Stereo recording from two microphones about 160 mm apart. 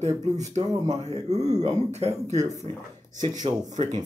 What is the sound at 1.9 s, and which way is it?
Speech, 45° right (ahead or behind).